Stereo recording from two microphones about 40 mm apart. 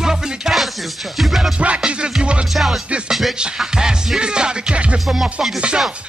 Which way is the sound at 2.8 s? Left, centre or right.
Right.